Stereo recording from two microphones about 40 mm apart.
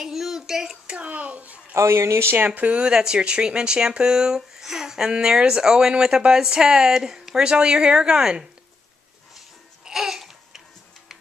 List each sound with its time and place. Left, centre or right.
0.0 s a sound: centre
0.5 s speech: centre
0.9 s speech: right
1.9 s speech: right
2.4 s speech: right
2.9 s a woman's voice: centre
9.8 s babbling: centre